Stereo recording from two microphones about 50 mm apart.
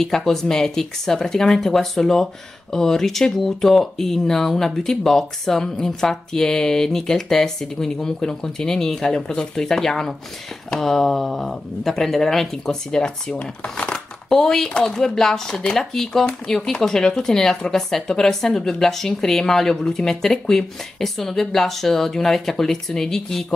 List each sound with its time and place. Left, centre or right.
0.0 s speech: centre; by 14.0 s left
14.3 s speech: centre